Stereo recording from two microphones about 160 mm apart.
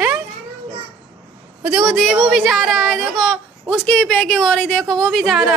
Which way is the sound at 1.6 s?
5° right (ahead or behind).